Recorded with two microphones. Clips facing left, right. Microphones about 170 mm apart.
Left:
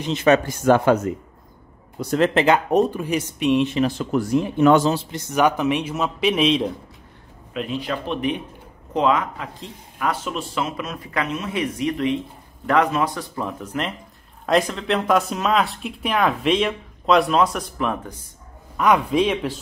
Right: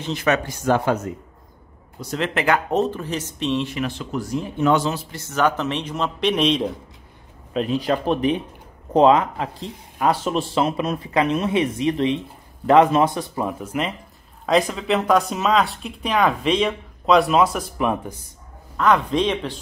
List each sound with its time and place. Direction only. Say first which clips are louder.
0.0 s speech: left 4 dB; 25° left (ahead or behind)
0.7 s speech: left 4 dB; 60° left (ahead or behind)
2.0 s speech: left 6 dB; 50° left (ahead or behind)
2.3 s a man's voice: even; 20° left (ahead or behind)
4.4 s speech: left 4 dB; 65° left (ahead or behind)
4.9 s a man's voice: left 3 dB; 20° left (ahead or behind); by 6.7 s centre (ahead or behind)
7.5 s speech: right 5 dB; 40° right (ahead or behind); by 13.5 s 20° right (ahead or behind)
13.5 s speech: right 2 dB; 5° right (ahead or behind)
18.8 s a man's voice: left 1 dB; 10° left (ahead or behind)